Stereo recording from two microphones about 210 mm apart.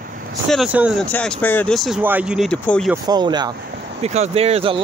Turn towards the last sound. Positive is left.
turn(degrees=-25)  # may be behind; listen again after turning